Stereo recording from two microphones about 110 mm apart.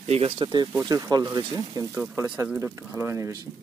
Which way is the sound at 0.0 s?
65° right (ahead or behind).